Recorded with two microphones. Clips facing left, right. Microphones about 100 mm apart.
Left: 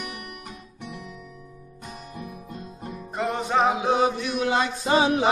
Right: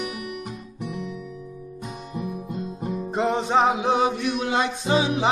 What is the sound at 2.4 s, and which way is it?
Music, 15° right (ahead or behind).